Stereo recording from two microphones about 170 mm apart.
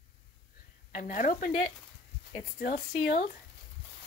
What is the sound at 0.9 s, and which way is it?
Speech, 45° left (ahead or behind).